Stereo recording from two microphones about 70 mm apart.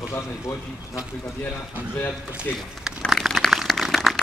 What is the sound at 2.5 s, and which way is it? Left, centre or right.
Speech, left.